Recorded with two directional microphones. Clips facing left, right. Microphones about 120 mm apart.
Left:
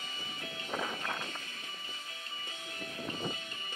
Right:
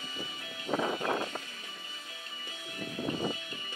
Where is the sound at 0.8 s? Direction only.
30° right (ahead or behind).